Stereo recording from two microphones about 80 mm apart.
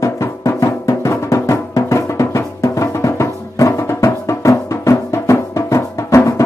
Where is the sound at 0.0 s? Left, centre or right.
Left.